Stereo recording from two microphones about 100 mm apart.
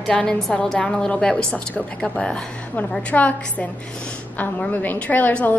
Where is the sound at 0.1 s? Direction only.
5° left (ahead or behind).